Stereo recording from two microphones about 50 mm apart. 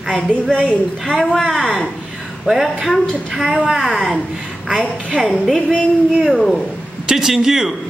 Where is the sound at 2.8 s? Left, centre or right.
Centre.